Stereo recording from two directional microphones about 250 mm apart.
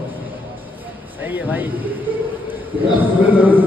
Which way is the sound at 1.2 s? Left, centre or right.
Centre.